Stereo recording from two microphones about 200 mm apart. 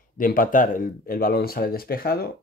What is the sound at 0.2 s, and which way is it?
Speech, 45° left (ahead or behind).